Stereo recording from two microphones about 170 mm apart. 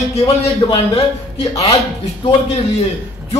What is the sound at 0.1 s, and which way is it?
Speech, 35° left (ahead or behind).